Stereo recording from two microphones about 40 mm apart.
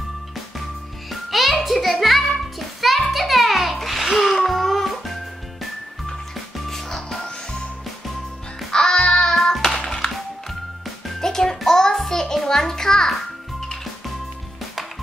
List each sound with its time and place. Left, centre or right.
1.3 s music: centre
6.3 s music: centre
8.7 s music: centre
9.3 s music: centre